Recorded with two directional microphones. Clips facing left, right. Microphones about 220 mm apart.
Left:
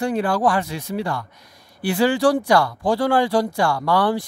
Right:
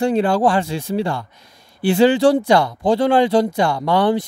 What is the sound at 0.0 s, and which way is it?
Speech, 25° right (ahead or behind).